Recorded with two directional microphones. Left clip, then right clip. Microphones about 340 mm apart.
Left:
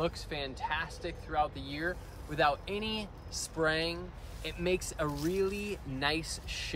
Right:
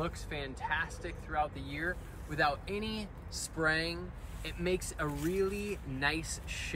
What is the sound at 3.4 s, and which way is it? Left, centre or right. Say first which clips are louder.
Speech: left 1 dB; centre.